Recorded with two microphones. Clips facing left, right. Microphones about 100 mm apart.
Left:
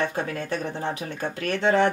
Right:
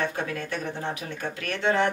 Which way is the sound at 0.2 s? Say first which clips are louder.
Left 2 dB; 40° left (ahead or behind).